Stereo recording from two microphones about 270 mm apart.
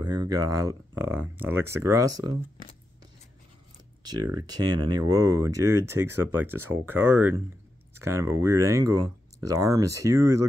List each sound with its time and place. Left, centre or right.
0.0 s speech: centre
4.0 s speech: centre
8.8 s speech: right
9.9 s speech: centre